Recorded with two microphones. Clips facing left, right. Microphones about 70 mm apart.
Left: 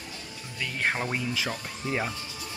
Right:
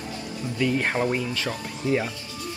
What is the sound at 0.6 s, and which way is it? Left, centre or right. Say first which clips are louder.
Speech: right 6 dB; centre.